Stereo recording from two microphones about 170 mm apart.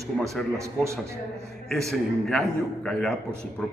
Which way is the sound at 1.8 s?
Centre (ahead or behind).